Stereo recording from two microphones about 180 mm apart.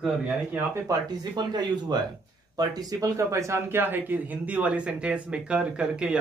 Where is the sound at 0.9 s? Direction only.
25° right (ahead or behind).